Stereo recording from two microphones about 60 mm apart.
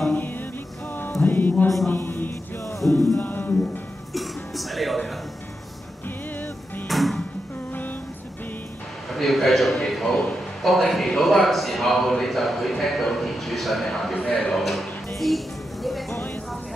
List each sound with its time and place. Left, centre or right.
0.1 s music: left
2.0 s a sound: left
2.8 s music: left
3.2 s speech: left
4.1 s music: centre
6.9 s music: centre
9.1 s a sound: centre
14.1 s music: centre